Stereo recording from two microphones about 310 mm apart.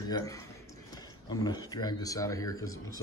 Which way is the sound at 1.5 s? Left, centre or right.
Centre.